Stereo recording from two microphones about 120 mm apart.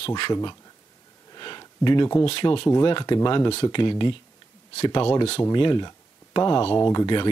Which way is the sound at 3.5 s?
45° left (ahead or behind).